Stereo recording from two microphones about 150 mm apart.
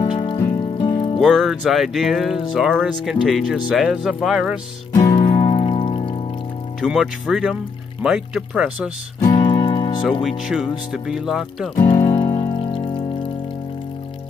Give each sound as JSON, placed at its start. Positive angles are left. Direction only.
{"t": 0.0, "sound": "music", "side_deg": 35}
{"t": 1.2, "sound": "speech", "side_deg": 0}
{"t": 4.9, "sound": "music", "side_deg": 25}
{"t": 6.8, "sound": "speech", "side_deg": -5}
{"t": 9.2, "sound": "music", "side_deg": 30}
{"t": 10.2, "sound": "speech", "side_deg": 0}
{"t": 11.8, "sound": "music", "side_deg": 25}
{"t": 12.3, "sound": "music", "side_deg": 40}